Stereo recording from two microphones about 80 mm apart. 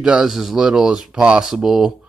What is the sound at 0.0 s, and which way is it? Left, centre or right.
Speech, centre.